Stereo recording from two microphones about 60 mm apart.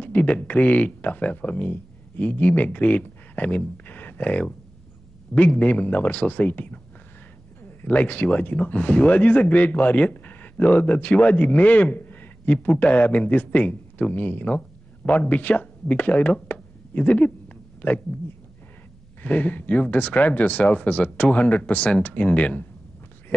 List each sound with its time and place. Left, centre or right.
0.0 s speech: left
16.5 s a sound: left
17.8 s speech: left
19.2 s speech: left